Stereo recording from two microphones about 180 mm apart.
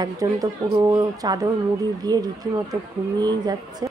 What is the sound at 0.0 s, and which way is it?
A woman's voice, 20° right (ahead or behind).